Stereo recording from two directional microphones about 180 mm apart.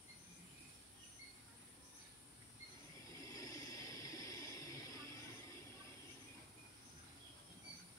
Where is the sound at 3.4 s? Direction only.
20° left (ahead or behind).